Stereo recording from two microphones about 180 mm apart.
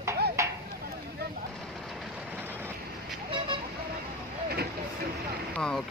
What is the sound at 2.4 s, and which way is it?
Vehicle, 10° right (ahead or behind).